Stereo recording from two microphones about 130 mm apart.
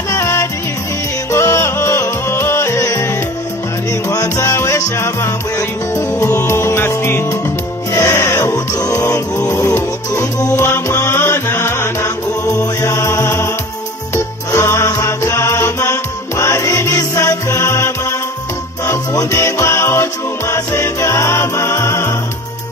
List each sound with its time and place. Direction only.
0.1 s music: 20° left (ahead or behind)
4.1 s music: 25° left (ahead or behind)
10.6 s music: 20° left (ahead or behind)